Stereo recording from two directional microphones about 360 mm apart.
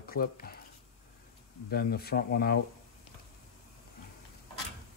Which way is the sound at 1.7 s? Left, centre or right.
Left.